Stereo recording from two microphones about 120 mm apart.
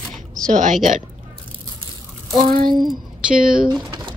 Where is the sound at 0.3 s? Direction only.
90° right.